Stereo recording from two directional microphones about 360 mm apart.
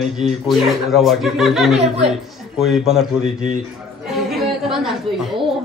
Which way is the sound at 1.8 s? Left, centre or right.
Centre.